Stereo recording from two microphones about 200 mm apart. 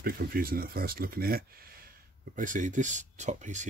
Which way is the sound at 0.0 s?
45° right (ahead or behind).